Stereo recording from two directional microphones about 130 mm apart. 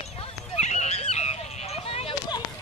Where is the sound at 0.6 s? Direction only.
60° left (ahead or behind).